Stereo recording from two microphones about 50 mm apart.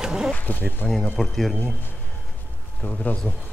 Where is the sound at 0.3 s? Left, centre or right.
Left.